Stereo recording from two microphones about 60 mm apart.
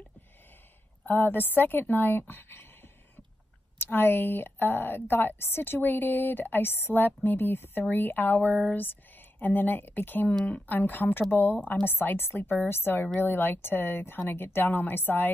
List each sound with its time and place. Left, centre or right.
1.0 s speech: left